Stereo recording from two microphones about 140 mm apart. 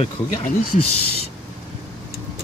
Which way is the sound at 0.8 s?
45° left (ahead or behind).